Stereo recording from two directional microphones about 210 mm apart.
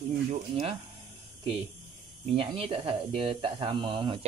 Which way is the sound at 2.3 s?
25° right (ahead or behind).